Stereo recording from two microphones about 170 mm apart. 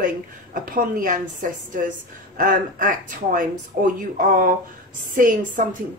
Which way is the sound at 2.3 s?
55° right (ahead or behind).